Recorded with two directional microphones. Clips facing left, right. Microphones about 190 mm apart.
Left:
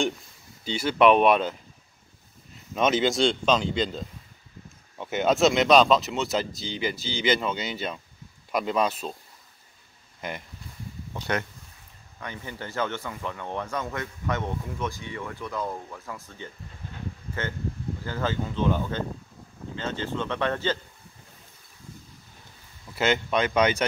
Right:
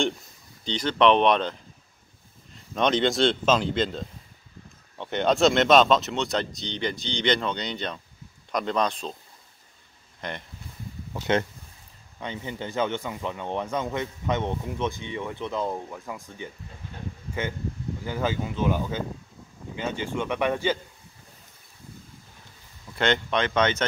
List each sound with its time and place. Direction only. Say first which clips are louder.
0.7 s speech: left 1 dB; 10° left (ahead or behind)
2.7 s speech: even; 5° left (ahead or behind)
10.2 s speech: even; 5° left (ahead or behind)
12.2 s speech: right 4 dB; 20° right (ahead or behind)
22.9 s speech: even; 5° left (ahead or behind)